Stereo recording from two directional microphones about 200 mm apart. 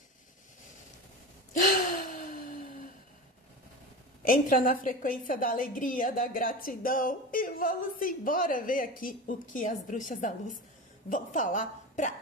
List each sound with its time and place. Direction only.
1.6 s gasp: 45° left (ahead or behind)
4.2 s a woman's voice: 45° left (ahead or behind)